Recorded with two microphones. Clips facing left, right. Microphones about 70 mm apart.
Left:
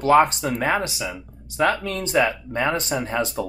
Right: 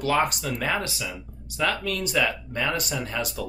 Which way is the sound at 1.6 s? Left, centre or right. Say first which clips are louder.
Left 5 dB; left.